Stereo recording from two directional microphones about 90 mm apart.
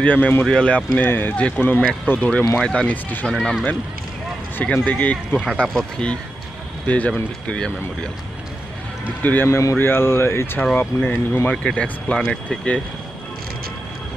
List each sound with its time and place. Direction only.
0.0 s speech: 20° left (ahead or behind)
2.9 s speech: 20° left (ahead or behind)
3.3 s speech: 5° left (ahead or behind)
4.8 s speech: 15° left (ahead or behind)
9.2 s speech: 20° left (ahead or behind)
9.5 s speech: 30° left (ahead or behind)
11.5 s speech: 10° left (ahead or behind)